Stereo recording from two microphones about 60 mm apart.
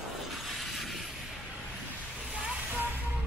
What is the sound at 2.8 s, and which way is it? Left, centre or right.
Music, right.